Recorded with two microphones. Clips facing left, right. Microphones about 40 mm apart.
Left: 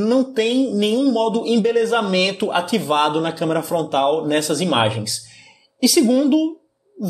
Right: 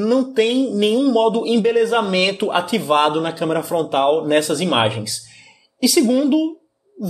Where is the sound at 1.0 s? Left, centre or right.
Right.